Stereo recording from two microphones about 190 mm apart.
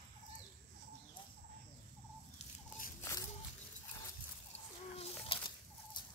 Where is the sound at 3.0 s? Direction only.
15° left (ahead or behind).